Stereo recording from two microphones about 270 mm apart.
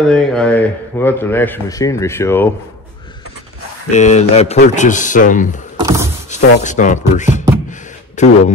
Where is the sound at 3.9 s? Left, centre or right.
Left.